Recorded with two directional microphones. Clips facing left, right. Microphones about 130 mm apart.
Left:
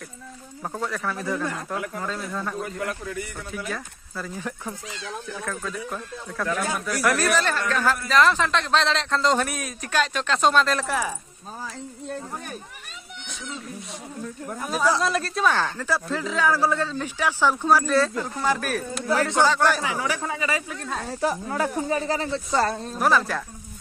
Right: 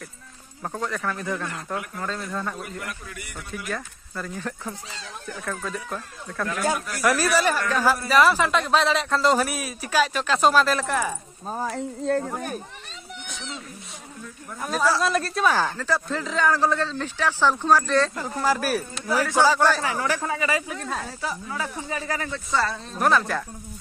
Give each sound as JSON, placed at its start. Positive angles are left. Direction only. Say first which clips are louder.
{"t": 0.7, "sound": "a man's voice", "louder": "even", "side_deg": 5}
{"t": 4.4, "sound": "a man's voice", "louder": "even", "side_deg": 5}
{"t": 11.4, "sound": "speech", "louder": "right 8 dB", "side_deg": -55}
{"t": 14.6, "sound": "a man's voice", "louder": "even", "side_deg": 5}
{"t": 18.1, "sound": "a man's voice", "louder": "right 1 dB", "side_deg": 0}
{"t": 19.7, "sound": "a man's voice", "louder": "right 1 dB", "side_deg": 10}
{"t": 21.2, "sound": "speech", "louder": "left 6 dB", "side_deg": 45}
{"t": 22.0, "sound": "speech", "louder": "left 4 dB", "side_deg": 25}
{"t": 22.5, "sound": "speech", "louder": "left 1 dB", "side_deg": 45}
{"t": 22.9, "sound": "a man's voice", "louder": "right 1 dB", "side_deg": 0}